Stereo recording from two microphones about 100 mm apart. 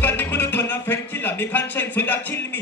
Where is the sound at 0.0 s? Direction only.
20° left (ahead or behind).